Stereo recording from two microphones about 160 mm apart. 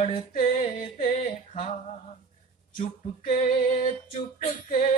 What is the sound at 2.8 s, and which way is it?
Music, 50° left (ahead or behind).